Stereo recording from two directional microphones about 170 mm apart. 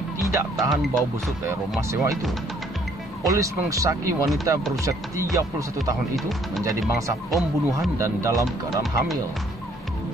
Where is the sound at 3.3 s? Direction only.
20° right (ahead or behind).